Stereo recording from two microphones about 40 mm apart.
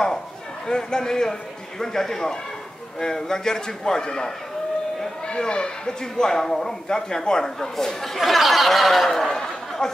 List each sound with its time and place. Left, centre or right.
0.7 s a man's voice: centre